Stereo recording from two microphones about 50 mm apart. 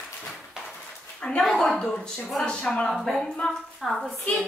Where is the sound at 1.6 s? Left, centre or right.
Centre.